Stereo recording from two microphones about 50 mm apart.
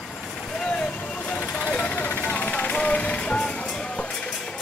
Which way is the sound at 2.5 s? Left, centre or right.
Left.